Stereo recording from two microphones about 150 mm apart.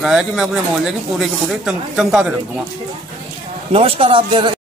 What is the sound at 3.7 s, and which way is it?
Speech, 40° right (ahead or behind).